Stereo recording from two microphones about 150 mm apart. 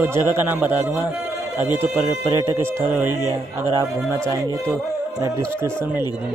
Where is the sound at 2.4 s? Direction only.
20° right (ahead or behind).